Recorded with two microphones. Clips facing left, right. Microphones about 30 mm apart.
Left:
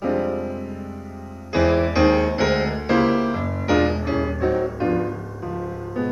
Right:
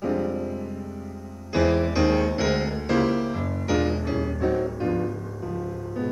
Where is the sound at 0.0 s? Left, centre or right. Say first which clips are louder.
Left 3 dB; left.